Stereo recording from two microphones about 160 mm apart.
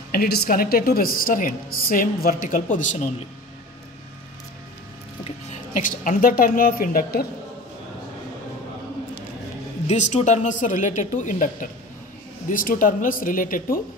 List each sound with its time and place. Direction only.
0.1 s a woman's voice: 75° left (ahead or behind); by 3.2 s 50° left (ahead or behind)
5.2 s speech: 50° left (ahead or behind); by 7.2 s 70° left (ahead or behind)
9.8 s a woman's voice: 45° left (ahead or behind)